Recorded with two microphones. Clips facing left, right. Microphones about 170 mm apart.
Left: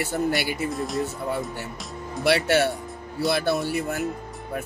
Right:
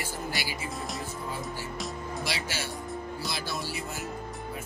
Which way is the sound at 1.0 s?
65° left (ahead or behind).